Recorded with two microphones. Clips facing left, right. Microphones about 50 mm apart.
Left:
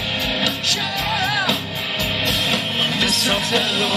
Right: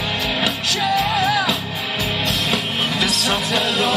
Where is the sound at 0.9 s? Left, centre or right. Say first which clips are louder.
Right 4 dB; centre.